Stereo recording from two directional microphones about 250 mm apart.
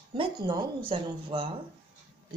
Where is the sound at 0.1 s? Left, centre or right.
Centre.